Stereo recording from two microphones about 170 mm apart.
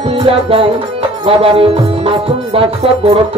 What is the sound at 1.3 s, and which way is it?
Music, 35° right (ahead or behind).